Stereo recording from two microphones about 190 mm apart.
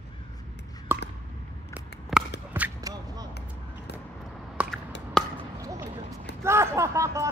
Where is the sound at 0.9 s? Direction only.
10° right (ahead or behind).